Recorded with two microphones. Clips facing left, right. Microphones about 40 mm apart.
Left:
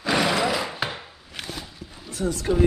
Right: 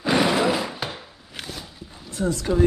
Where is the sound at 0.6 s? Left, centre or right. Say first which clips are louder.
Left 1 dB; centre.